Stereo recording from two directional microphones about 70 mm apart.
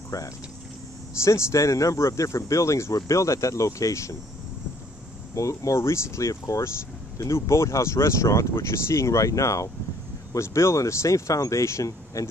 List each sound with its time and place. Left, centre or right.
0.1 s speech: left
1.2 s speech: left
5.3 s speech: left